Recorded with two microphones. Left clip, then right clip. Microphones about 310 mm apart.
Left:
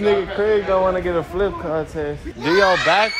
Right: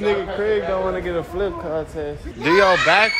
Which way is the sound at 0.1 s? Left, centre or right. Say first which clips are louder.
Left 3 dB; centre.